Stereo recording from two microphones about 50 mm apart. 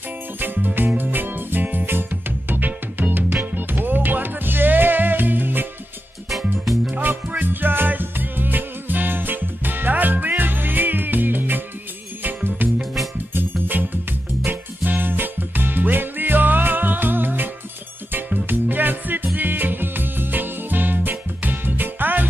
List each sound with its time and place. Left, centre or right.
0.4 s music: right
6.3 s music: centre
7.0 s music: right
13.3 s music: right